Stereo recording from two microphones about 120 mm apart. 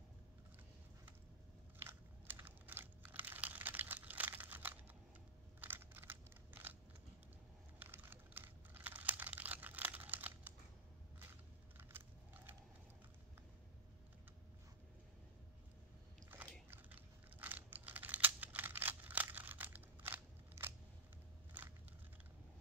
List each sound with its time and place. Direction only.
1.9 s computer keyboard: 20° right (ahead or behind)
5.6 s crunch: 15° right (ahead or behind)
7.8 s computer keyboard: 15° right (ahead or behind)
11.7 s biting: 15° right (ahead or behind)
16.6 s computer keyboard: 15° right (ahead or behind)
21.6 s a sound: 15° right (ahead or behind)